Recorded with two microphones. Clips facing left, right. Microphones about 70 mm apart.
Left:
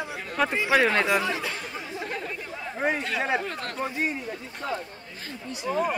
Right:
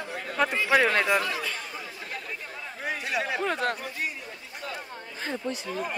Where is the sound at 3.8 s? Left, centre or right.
Left.